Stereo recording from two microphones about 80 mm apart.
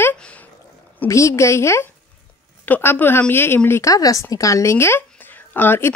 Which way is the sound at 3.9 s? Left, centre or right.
Left.